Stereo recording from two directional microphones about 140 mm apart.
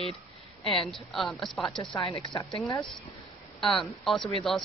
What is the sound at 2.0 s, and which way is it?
Speech, 35° left (ahead or behind).